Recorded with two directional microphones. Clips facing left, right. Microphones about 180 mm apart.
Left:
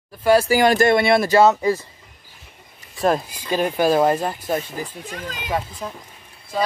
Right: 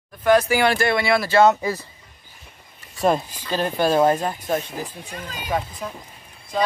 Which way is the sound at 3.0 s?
5° left (ahead or behind).